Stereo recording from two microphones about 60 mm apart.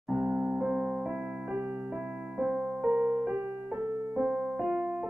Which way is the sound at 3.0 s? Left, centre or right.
Right.